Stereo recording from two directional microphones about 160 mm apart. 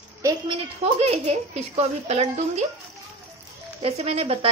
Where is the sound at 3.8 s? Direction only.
40° right (ahead or behind).